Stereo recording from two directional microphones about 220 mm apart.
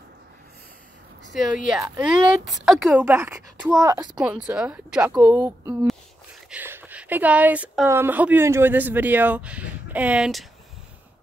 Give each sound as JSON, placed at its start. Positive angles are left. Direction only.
{"t": 1.3, "sound": "speech", "side_deg": 0}
{"t": 4.2, "sound": "speech", "side_deg": -5}